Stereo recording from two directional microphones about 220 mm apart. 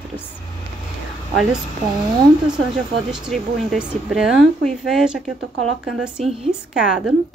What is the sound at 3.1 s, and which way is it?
Speech, centre (ahead or behind).